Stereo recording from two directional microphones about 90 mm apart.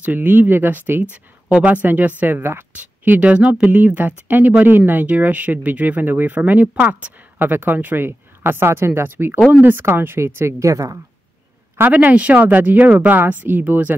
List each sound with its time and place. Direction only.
0.0 s speech: 20° right (ahead or behind); by 11.0 s 35° right (ahead or behind)
11.8 s speech: 20° right (ahead or behind)